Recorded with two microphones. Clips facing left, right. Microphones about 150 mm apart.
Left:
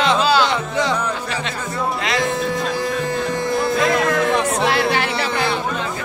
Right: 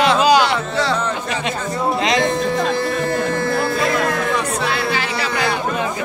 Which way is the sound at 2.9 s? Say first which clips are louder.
Right 2 dB; 15° left (ahead or behind).